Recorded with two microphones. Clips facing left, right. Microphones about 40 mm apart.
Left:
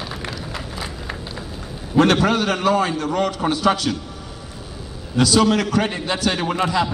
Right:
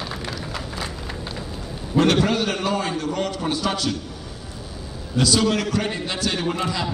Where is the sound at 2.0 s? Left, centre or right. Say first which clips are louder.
Left 3 dB; left.